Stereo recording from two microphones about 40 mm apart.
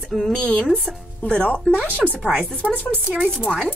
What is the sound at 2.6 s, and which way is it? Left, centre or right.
Speech, right.